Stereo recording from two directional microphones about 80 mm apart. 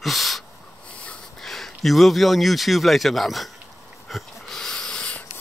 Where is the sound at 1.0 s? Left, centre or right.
Centre.